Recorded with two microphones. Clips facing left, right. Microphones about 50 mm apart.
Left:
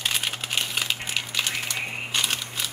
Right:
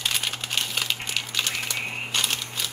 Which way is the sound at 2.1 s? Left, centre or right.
Centre.